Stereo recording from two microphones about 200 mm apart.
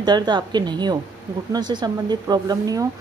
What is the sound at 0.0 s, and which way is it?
A woman's voice, 20° right (ahead or behind).